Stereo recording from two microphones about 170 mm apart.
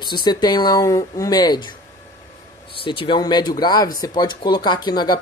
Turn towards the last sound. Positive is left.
turn(degrees=25)  # may be behind; listen again after turning